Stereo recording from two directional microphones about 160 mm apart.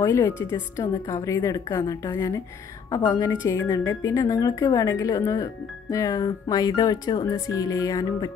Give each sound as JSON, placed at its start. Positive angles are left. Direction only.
{"t": 0.0, "sound": "a woman's voice", "side_deg": 20}